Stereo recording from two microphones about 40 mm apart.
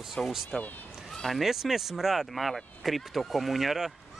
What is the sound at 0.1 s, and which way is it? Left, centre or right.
Speech, centre.